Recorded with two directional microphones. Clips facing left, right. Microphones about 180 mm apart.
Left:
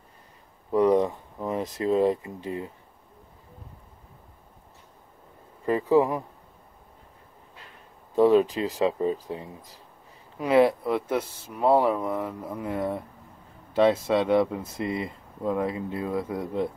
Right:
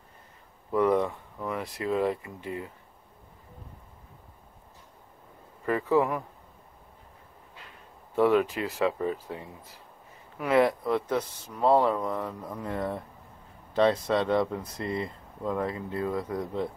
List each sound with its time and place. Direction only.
0.7 s a sound: 15° left (ahead or behind)
1.9 s speech: 20° left (ahead or behind)
5.7 s speech: 15° left (ahead or behind)
8.1 s speech: 20° left (ahead or behind)
10.9 s speech: 10° left (ahead or behind)